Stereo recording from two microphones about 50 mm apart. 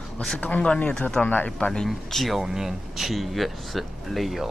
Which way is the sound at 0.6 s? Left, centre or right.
Left.